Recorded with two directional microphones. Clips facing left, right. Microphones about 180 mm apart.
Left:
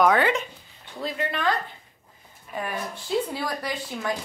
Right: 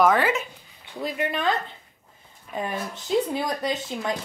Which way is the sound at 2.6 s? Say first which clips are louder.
Right 1 dB; 20° right (ahead or behind).